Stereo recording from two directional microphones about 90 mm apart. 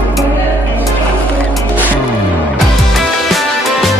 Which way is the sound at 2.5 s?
Centre (ahead or behind).